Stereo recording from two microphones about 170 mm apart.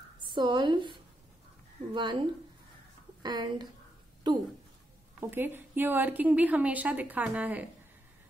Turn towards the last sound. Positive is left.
turn(degrees=-10)  # may be behind; listen again after turning